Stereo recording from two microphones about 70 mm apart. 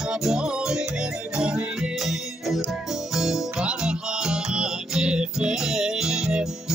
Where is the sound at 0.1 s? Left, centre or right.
Centre.